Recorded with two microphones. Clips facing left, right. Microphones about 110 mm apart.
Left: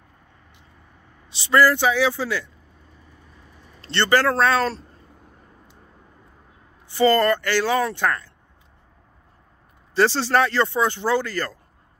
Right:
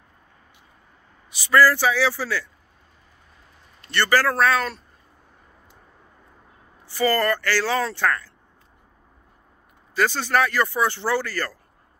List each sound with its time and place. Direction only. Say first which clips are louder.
1.3 s speech: even; 25° left (ahead or behind)
3.8 s speech: left 1 dB; 25° left (ahead or behind)
6.9 s speech: left 4 dB; 20° left (ahead or behind)
9.9 s speech: left 3 dB; 30° left (ahead or behind)